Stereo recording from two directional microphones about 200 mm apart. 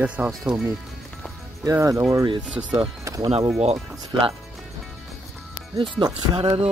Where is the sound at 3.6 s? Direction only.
30° right (ahead or behind).